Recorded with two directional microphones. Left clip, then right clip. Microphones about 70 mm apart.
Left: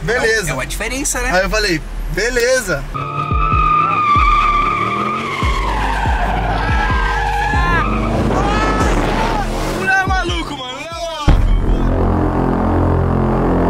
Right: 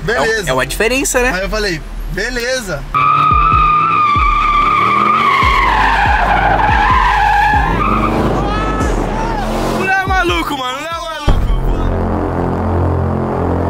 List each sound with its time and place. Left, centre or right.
0.1 s speech: centre
3.3 s vehicle: centre
3.7 s vehicle: centre
4.9 s vehicle: right
6.7 s skidding: right
8.5 s sheep: centre
12.1 s music: centre